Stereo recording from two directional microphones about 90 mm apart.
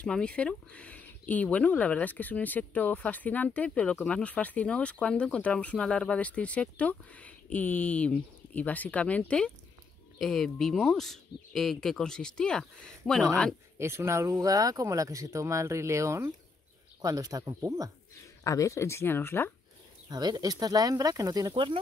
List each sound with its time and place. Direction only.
0.0 s speech: 10° left (ahead or behind)
13.7 s speech: 30° right (ahead or behind)
18.2 s speech: 35° left (ahead or behind)
20.1 s speech: 50° right (ahead or behind)